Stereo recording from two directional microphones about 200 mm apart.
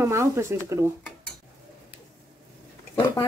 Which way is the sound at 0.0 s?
15° right (ahead or behind).